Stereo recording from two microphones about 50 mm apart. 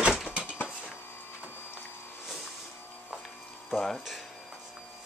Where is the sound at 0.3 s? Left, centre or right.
Right.